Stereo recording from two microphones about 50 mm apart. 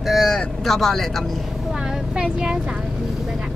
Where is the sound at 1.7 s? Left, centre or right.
Centre.